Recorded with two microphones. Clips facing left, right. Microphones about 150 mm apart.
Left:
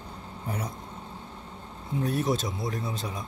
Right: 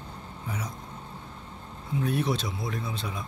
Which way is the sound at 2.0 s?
40° left (ahead or behind).